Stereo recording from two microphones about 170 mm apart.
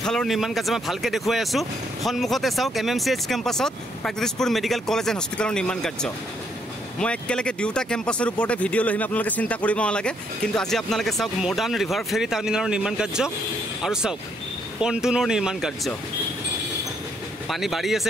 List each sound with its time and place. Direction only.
0.0 s speech: 5° left (ahead or behind)
14.8 s speech: 5° right (ahead or behind)
17.5 s speech: centre (ahead or behind)